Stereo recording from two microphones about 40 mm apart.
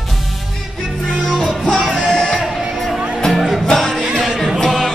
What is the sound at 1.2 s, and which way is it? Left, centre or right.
Music, centre.